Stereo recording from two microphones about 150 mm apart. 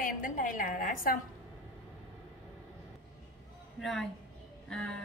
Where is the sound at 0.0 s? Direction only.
65° left (ahead or behind).